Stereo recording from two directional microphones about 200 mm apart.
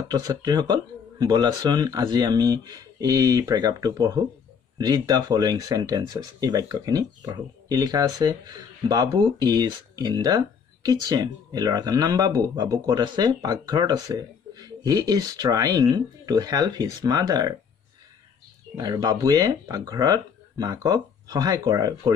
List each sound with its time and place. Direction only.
0.1 s speech: 20° right (ahead or behind)
18.8 s speech: 20° right (ahead or behind)